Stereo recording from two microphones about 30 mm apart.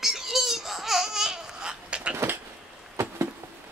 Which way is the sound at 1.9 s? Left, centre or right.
Right.